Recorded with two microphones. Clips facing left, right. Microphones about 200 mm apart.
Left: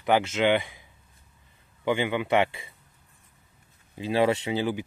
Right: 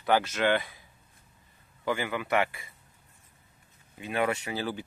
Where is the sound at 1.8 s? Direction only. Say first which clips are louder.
Left 5 dB; 20° left (ahead or behind).